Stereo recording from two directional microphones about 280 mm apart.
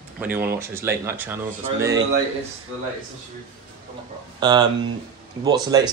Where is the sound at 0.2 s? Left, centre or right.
Centre.